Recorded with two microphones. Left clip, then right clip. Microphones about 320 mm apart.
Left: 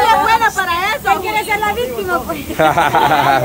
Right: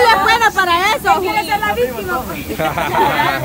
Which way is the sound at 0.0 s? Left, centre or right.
Right.